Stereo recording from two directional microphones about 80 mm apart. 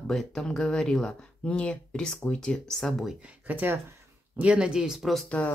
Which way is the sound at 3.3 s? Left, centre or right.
Right.